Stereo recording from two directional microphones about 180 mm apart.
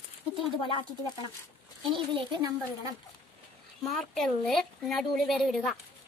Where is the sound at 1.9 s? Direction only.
30° right (ahead or behind).